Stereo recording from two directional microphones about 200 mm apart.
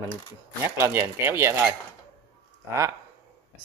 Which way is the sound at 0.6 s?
10° right (ahead or behind).